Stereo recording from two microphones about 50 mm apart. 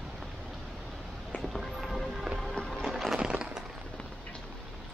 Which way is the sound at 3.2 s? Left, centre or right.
Centre.